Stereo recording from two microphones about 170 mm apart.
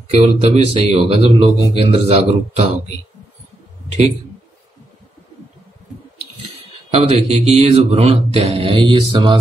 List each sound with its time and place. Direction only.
0.1 s a man's voice: 35° right (ahead or behind)
6.9 s a man's voice: 40° right (ahead or behind)